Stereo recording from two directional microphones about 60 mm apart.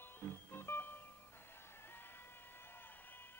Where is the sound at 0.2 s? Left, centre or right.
Left.